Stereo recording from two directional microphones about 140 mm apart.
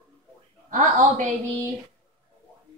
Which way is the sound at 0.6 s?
65° right (ahead or behind).